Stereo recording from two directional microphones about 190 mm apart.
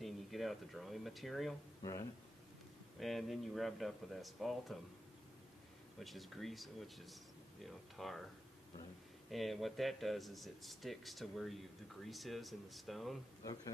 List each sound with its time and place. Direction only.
0.0 s speech: centre (ahead or behind)
1.8 s speech: 15° left (ahead or behind)
3.0 s speech: centre (ahead or behind)
5.9 s speech: centre (ahead or behind)
9.3 s speech: centre (ahead or behind)